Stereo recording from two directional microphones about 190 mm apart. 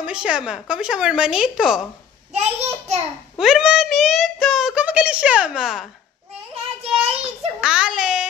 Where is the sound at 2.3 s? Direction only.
35° right (ahead or behind).